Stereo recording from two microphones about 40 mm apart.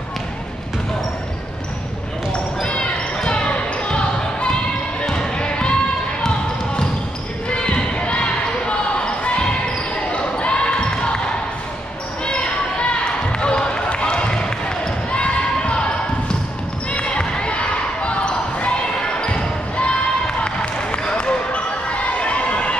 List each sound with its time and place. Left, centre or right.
2.6 s basketball bounce: left
7.4 s basketball bounce: left
12.3 s a sound: left
15.0 s basketball bounce: left